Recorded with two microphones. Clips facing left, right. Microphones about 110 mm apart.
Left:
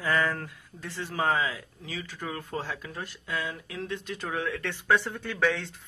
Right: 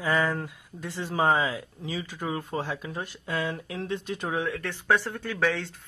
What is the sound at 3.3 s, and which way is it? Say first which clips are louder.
Speech: right 4 dB; 35° right (ahead or behind).